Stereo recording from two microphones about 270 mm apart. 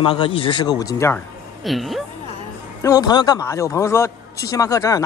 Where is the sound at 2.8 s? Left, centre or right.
Centre.